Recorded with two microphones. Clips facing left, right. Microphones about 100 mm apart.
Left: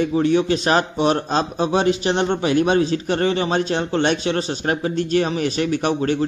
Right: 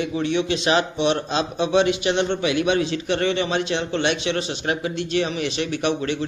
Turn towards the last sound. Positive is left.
turn(degrees=40)  # may be behind; listen again after turning